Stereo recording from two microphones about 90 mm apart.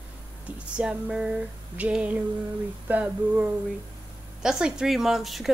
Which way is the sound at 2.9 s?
15° right (ahead or behind).